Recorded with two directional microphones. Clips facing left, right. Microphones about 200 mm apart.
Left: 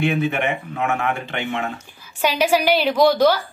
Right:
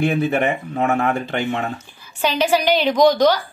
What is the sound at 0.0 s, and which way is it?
Speech, 40° right (ahead or behind).